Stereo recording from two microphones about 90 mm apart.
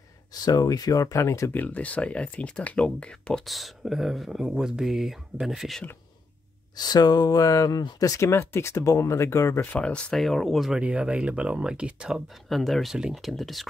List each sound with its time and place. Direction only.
0.3 s speech: 45° left (ahead or behind)
1.5 s speech: 20° left (ahead or behind)
3.4 s speech: centre (ahead or behind)
6.7 s speech: 50° left (ahead or behind); by 9.6 s 35° left (ahead or behind)
9.6 s speech: 15° left (ahead or behind); by 10.8 s centre (ahead or behind)
10.8 s speech: 15° right (ahead or behind)
12.1 s speech: centre (ahead or behind)